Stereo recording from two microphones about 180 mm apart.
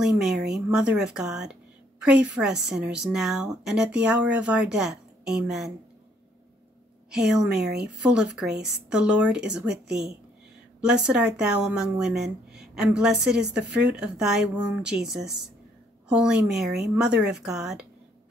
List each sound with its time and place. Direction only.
0.0 s a woman's voice: 5° right (ahead or behind)
7.1 s a woman's voice: 5° right (ahead or behind)
7.5 s speech: 60° right (ahead or behind)
8.5 s a woman's voice: 5° right (ahead or behind)